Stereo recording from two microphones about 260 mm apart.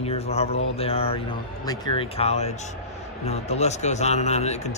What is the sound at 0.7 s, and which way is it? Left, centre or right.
A man's voice, left.